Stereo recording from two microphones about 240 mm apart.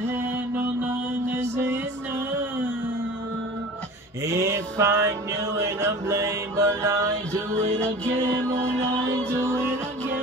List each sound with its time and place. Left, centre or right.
0.8 s mantra: centre
4.3 s music: centre
5.6 s mantra: centre
8.3 s music: centre